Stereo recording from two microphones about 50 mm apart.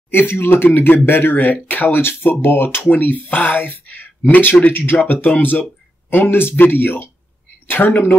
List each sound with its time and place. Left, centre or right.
0.1 s speech: left
0.7 s speech: left
2.8 s speech: left